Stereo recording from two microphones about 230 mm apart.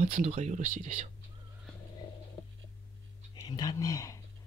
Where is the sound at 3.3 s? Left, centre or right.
Centre.